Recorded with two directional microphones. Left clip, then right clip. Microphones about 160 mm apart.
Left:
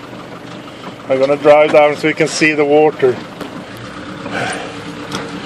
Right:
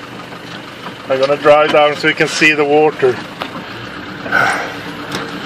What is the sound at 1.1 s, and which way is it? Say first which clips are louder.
Speech: even; 10° left (ahead or behind).